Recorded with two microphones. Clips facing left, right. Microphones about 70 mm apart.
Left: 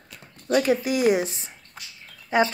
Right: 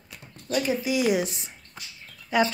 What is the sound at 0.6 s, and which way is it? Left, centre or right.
Speech, left.